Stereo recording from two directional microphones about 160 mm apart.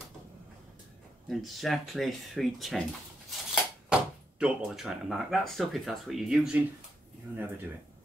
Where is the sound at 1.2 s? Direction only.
Centre (ahead or behind).